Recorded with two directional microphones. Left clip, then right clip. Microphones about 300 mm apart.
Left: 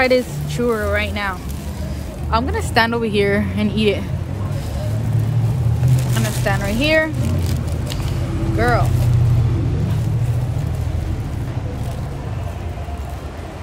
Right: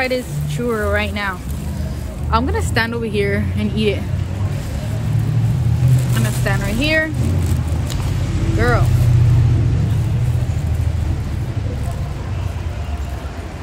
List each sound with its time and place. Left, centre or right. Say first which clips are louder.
0.0 s speech: left 4 dB; left
0.7 s speech: right 1 dB; centre
2.3 s a woman's voice: left 1 dB; centre
6.1 s a woman's voice: left 2 dB; centre
8.5 s speech: left 1 dB; centre